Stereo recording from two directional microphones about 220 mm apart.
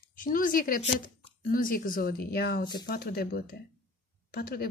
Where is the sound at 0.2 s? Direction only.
40° left (ahead or behind).